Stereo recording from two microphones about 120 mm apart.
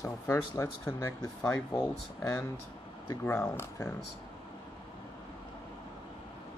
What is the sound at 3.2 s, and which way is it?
Speech, 15° left (ahead or behind).